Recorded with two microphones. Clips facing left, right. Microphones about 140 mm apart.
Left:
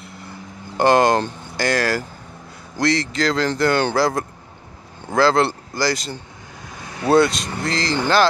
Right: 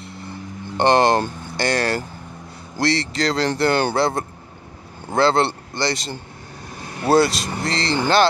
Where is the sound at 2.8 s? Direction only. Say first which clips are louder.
Left 1 dB; 30° right (ahead or behind).